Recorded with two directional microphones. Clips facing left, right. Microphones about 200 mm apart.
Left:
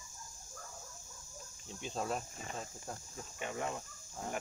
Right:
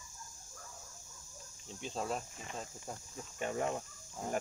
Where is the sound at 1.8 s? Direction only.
Centre (ahead or behind).